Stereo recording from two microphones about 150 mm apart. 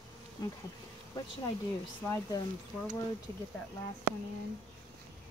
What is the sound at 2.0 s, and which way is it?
Speech, 15° left (ahead or behind).